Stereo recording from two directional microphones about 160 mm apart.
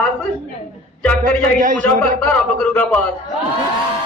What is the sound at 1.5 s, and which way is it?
Speech, 55° right (ahead or behind).